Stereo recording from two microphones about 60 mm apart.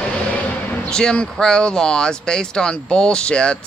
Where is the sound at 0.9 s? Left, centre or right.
Centre.